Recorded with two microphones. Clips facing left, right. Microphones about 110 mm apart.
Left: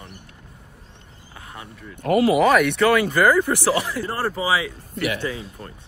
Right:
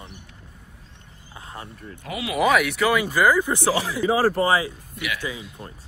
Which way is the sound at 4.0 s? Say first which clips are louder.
Right 5 dB; 80° right.